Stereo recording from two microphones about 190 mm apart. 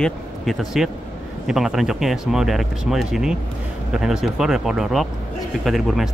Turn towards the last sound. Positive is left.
turn(degrees=0)  # may be behind; listen again after turning